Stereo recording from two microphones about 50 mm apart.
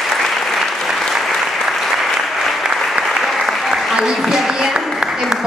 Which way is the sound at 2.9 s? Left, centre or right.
Centre.